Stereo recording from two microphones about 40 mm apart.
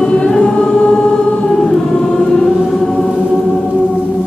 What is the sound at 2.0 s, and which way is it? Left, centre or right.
Music, centre.